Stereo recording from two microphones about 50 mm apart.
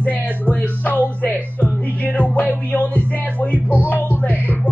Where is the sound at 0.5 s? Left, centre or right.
Left.